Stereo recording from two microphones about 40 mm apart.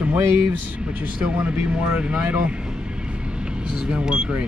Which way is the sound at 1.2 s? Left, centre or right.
Right.